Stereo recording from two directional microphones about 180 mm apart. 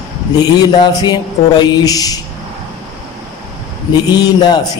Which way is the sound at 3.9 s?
25° left (ahead or behind).